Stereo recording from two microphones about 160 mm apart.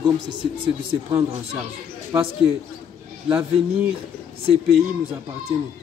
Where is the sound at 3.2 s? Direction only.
10° right (ahead or behind).